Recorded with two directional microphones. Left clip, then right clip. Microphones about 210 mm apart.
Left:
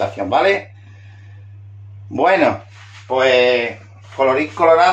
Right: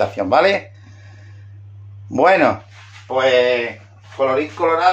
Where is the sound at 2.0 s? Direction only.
25° right (ahead or behind).